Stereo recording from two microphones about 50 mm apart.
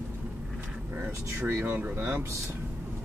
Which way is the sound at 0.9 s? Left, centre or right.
Right.